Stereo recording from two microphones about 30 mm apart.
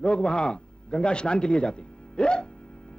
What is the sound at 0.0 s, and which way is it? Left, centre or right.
A man's voice, left.